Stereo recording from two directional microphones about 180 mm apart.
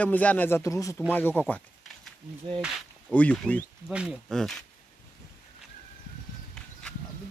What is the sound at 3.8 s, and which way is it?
Speech, 5° right (ahead or behind).